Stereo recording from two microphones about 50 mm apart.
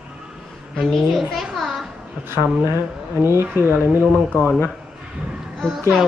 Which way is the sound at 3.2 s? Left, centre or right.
Right.